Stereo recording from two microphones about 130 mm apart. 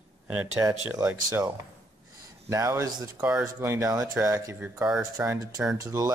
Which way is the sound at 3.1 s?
10° right (ahead or behind).